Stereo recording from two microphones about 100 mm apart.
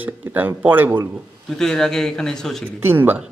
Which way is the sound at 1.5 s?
5° left (ahead or behind).